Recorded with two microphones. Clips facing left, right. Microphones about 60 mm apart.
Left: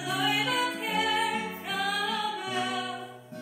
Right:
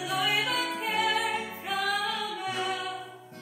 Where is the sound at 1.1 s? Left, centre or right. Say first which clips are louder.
Even; right.